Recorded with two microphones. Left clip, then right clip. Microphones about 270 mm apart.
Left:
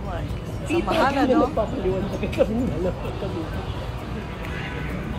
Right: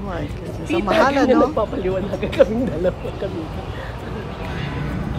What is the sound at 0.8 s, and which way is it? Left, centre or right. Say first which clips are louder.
Speech: right 5 dB; right.